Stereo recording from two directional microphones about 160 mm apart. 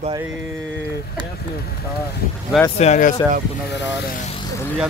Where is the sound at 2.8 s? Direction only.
50° left (ahead or behind).